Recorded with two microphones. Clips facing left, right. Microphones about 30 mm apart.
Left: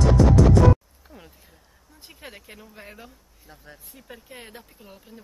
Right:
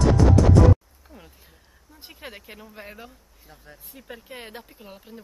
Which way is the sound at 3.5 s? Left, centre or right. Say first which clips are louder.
Left 1 dB; centre.